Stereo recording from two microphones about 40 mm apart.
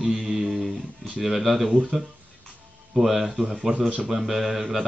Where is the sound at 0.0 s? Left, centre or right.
Centre.